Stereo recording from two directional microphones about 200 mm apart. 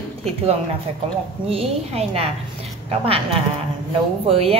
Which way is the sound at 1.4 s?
30° right (ahead or behind).